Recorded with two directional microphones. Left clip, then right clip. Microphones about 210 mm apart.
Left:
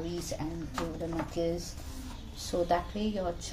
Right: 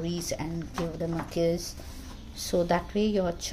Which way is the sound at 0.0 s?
35° right (ahead or behind).